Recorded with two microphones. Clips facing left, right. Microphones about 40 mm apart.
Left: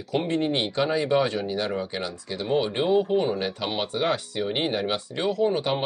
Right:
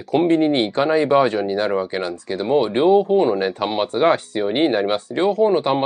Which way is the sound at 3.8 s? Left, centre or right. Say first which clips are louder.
Right 9 dB; right.